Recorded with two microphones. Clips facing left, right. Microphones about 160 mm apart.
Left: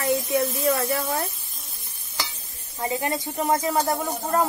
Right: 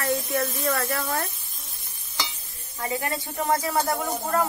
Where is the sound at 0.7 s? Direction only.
15° left (ahead or behind).